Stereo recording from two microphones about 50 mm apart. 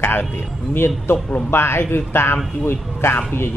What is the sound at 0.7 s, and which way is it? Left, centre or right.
A man's voice, left.